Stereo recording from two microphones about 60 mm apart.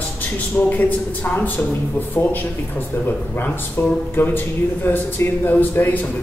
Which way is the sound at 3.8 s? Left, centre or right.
Left.